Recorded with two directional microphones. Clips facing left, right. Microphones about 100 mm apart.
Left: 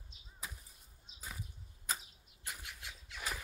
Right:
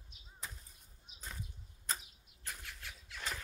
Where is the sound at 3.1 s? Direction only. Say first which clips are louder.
Left 1 dB; 10° left (ahead or behind).